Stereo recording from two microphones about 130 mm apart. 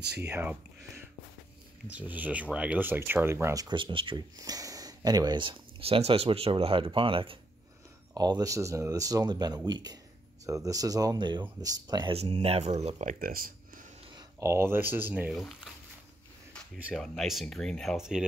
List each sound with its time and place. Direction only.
0.3 s speech: 15° right (ahead or behind)
3.6 s speech: 40° right (ahead or behind)
4.4 s speech: 25° right (ahead or behind); by 7.3 s 40° right (ahead or behind)
8.1 s speech: 30° right (ahead or behind)
12.1 s speech: 50° right (ahead or behind)
14.1 s speech: 20° right (ahead or behind)
15.3 s speech: 5° left (ahead or behind)